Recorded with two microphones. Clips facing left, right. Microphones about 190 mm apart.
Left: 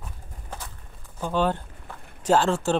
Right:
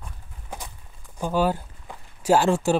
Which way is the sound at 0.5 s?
10° right (ahead or behind).